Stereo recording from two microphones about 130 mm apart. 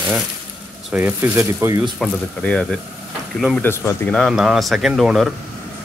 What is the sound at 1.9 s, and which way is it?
Speech, 5° left (ahead or behind).